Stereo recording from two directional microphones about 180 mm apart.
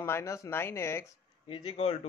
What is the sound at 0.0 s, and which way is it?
A man's voice, 15° left (ahead or behind).